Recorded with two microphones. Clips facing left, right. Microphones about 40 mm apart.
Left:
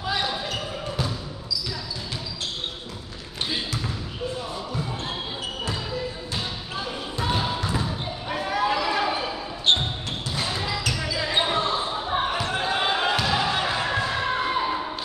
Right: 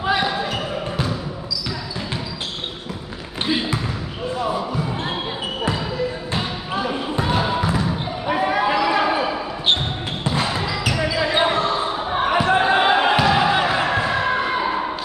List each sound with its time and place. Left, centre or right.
0.2 s basketball bounce: centre
3.4 s basketball bounce: right
6.3 s basketball bounce: right
8.3 s a sound: right
10.2 s basketball bounce: right
10.6 s basketball bounce: centre
12.3 s basketball bounce: right